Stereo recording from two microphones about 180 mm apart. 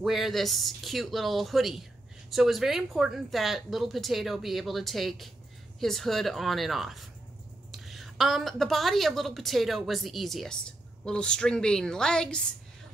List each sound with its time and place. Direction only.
0.0 s speech: centre (ahead or behind)